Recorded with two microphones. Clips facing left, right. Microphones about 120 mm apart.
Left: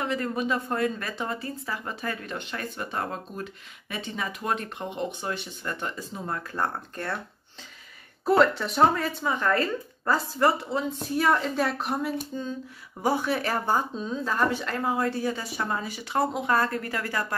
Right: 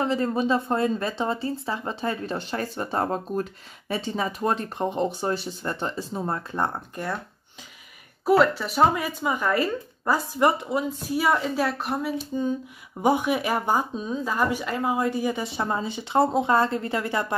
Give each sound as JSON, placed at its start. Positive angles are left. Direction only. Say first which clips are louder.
{"t": 0.0, "sound": "a woman's voice", "louder": "right 4 dB", "side_deg": -30}
{"t": 6.5, "sound": "speech", "louder": "right 2 dB", "side_deg": -15}
{"t": 8.3, "sound": "speech", "louder": "right 2 dB", "side_deg": -5}
{"t": 13.0, "sound": "speech", "louder": "right 3 dB", "side_deg": -15}